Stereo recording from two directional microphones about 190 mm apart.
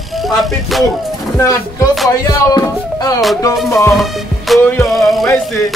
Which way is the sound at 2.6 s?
20° left (ahead or behind).